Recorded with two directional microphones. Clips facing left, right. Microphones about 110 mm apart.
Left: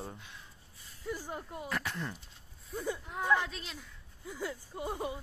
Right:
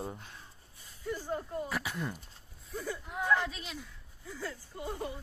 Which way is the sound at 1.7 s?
5° right (ahead or behind).